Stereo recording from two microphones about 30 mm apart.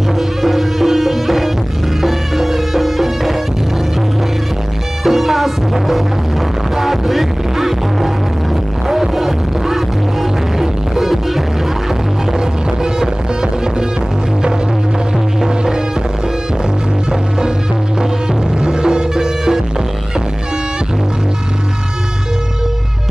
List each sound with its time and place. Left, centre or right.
0.4 s music: centre
5.0 s music: centre
13.0 s music: right
18.6 s music: right